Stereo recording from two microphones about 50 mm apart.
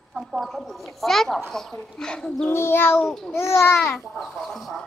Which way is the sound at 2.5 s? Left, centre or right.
Left.